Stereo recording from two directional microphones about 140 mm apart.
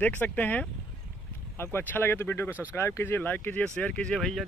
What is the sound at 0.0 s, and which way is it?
Speech, 10° left (ahead or behind).